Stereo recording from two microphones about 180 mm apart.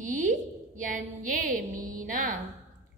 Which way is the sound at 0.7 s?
45° right (ahead or behind).